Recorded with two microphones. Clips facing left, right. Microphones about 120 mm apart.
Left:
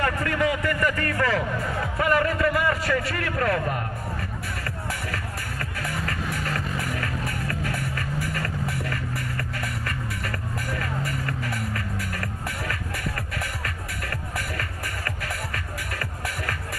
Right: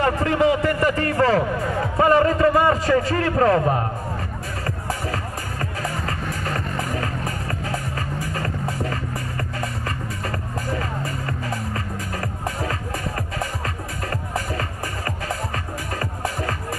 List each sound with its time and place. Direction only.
0.0 s a man's voice: 25° right (ahead or behind)
4.6 s music: 30° right (ahead or behind)
14.3 s music: 30° right (ahead or behind)